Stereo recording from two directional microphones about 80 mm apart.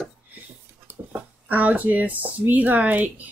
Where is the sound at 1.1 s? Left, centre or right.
Centre.